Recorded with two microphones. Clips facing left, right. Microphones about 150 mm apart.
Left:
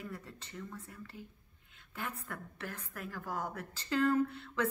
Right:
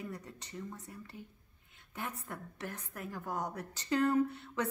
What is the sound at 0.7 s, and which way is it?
Speech, centre (ahead or behind).